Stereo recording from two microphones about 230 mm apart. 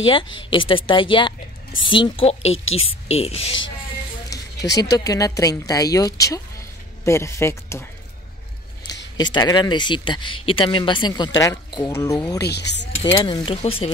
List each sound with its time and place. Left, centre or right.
0.0 s speech: left
2.5 s a woman's voice: left
3.1 s speech: left
4.3 s a sound: centre
4.7 s speech: centre
9.1 s speech: centre
12.4 s speech: left
13.0 s speech: centre